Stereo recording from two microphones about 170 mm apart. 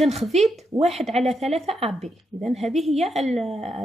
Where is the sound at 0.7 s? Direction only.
20° right (ahead or behind).